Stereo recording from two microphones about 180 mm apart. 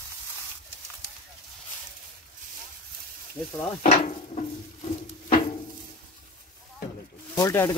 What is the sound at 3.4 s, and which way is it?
Speech, 15° left (ahead or behind).